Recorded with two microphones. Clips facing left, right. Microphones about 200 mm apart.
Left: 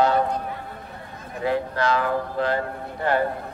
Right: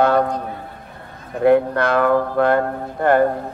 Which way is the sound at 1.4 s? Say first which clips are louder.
Right 9 dB; 60° right (ahead or behind).